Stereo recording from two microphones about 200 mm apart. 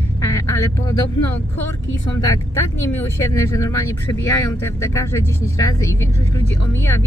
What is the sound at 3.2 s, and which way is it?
Speech, 15° left (ahead or behind).